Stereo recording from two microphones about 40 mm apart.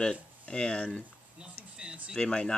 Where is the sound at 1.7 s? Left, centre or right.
Right.